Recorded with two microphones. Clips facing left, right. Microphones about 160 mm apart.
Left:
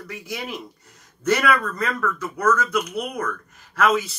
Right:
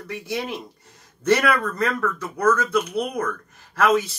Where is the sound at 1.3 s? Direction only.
30° right (ahead or behind).